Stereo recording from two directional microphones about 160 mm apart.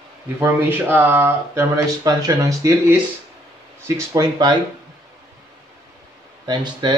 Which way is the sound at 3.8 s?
20° right (ahead or behind).